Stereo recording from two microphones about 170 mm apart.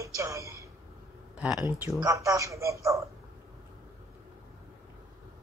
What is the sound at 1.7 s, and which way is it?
A woman's voice, 15° right (ahead or behind).